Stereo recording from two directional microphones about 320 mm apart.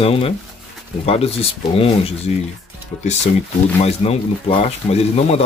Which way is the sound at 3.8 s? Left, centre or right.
Centre.